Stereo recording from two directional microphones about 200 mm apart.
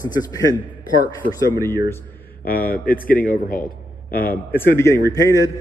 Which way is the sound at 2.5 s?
45° left (ahead or behind).